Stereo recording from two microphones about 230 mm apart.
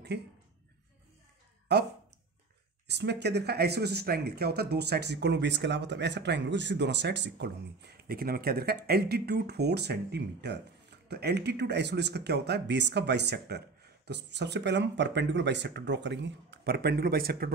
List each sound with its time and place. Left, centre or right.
0.1 s speech: right
1.7 s speech: right
2.9 s speech: right